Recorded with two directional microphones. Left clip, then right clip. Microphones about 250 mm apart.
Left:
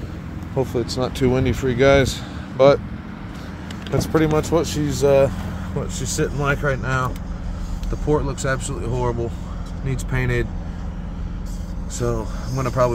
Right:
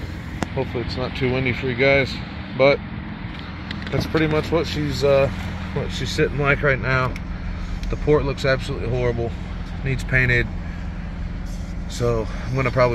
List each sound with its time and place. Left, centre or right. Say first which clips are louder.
0.6 s speech: left 5 dB; left
3.9 s speech: left 2 dB; left
5.9 s speech: right 3 dB; centre
8.1 s speech: right 3 dB; centre
10.1 s speech: right 6 dB; centre
12.0 s speech: right 3 dB; centre